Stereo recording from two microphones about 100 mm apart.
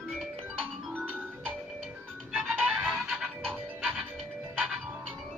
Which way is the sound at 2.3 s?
5° right (ahead or behind).